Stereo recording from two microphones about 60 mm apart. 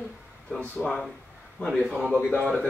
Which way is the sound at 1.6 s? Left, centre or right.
Left.